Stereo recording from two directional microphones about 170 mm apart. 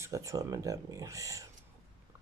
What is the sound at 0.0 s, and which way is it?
Speech, 20° right (ahead or behind).